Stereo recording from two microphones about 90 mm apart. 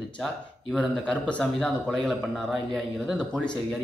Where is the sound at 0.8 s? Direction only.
15° left (ahead or behind); by 3.2 s centre (ahead or behind).